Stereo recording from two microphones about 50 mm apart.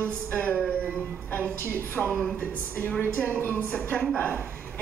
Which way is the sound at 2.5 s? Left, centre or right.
Left.